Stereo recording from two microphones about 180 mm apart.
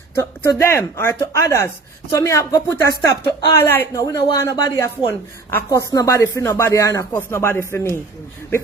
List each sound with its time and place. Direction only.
0.2 s speech: 15° left (ahead or behind)